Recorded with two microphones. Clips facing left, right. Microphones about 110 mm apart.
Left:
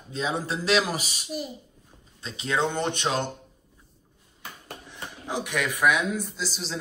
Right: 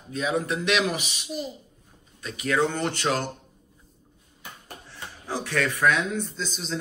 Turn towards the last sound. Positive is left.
turn(degrees=5)  # may be behind; listen again after turning